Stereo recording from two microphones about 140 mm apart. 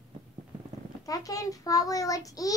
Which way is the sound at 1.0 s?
25° left (ahead or behind).